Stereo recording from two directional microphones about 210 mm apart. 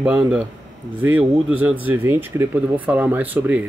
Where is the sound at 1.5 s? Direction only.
10° right (ahead or behind).